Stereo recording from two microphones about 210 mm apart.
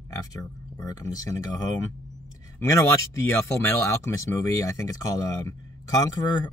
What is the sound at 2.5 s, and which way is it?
Speech, 15° left (ahead or behind).